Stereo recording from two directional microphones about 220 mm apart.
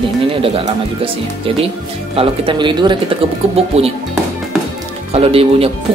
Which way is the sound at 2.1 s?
20° right (ahead or behind).